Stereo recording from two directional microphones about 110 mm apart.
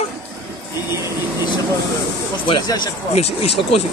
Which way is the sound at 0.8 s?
25° right (ahead or behind).